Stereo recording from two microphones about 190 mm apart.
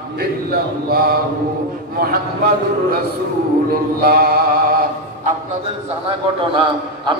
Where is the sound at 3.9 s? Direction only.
50° right (ahead or behind).